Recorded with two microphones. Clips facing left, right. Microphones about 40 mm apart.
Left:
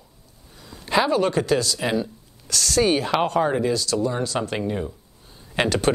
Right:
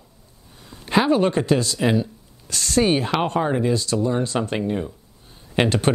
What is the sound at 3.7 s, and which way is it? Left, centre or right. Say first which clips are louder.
Speech: right 1 dB; right.